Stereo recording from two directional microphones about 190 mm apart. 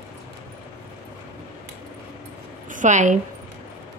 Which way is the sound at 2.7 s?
40° right (ahead or behind).